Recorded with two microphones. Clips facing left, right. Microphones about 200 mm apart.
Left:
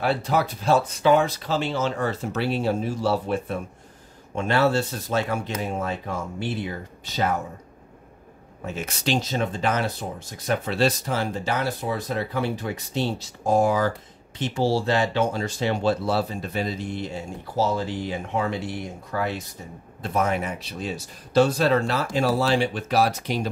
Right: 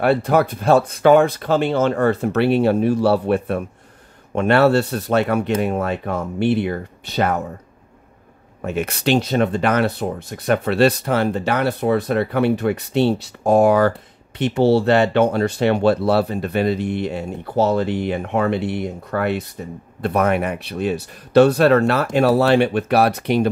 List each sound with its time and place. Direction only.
0.0 s speech: 55° right (ahead or behind)
8.6 s speech: 60° right (ahead or behind)